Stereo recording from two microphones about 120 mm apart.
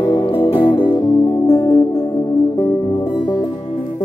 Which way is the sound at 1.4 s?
25° left (ahead or behind).